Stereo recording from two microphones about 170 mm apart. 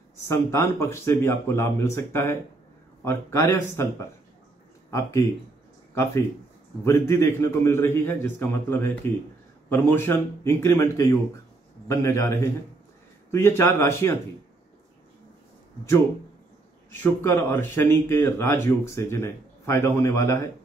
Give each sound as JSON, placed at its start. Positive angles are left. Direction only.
{"t": 0.3, "sound": "speech", "side_deg": 15}
{"t": 6.8, "sound": "speech", "side_deg": 15}
{"t": 16.9, "sound": "speech", "side_deg": 15}